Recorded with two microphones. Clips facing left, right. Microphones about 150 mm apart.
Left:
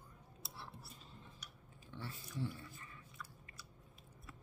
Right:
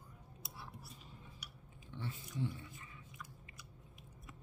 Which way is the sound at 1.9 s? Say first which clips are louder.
Right 2 dB; 20° right (ahead or behind).